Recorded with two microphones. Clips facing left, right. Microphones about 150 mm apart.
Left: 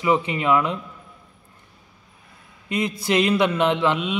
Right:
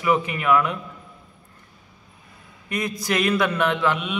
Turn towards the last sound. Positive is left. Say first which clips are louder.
# left 2 dB
turn(degrees=25)  # may be behind; listen again after turning